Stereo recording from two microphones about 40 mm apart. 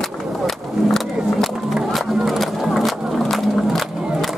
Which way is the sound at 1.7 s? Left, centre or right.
Centre.